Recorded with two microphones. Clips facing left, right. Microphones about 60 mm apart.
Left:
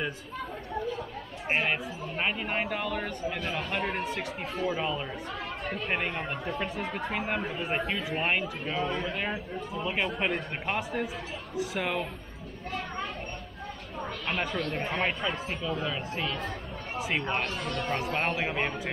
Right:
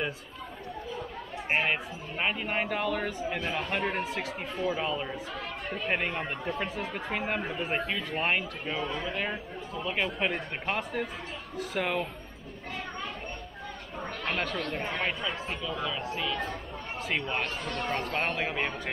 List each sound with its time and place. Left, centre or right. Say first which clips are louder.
1.7 s speech: even; centre
14.7 s speech: left 2 dB; centre
15.8 s speech: even; centre
17.8 s speech: left 1 dB; centre